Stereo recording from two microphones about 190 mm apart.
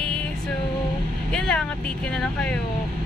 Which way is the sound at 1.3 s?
5° left (ahead or behind).